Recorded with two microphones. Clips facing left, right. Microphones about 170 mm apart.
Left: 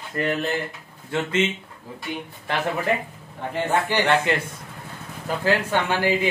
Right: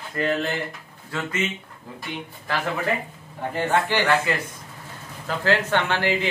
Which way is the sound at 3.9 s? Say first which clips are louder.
Left 1 dB; 25° left (ahead or behind).